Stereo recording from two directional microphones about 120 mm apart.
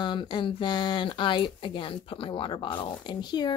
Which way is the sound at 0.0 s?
40° left (ahead or behind).